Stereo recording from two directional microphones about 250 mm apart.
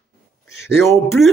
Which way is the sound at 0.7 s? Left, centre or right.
Centre.